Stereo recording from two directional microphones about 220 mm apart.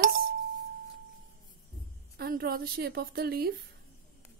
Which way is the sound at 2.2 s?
45° right (ahead or behind).